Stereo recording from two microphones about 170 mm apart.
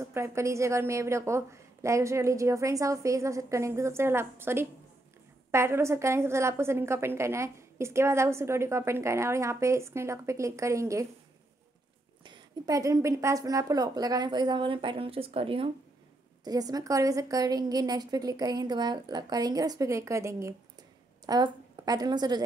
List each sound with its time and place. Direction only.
0.0 s a woman's voice: 15° right (ahead or behind)
12.3 s a woman's voice: 20° right (ahead or behind)
16.4 s a woman's voice: 20° right (ahead or behind)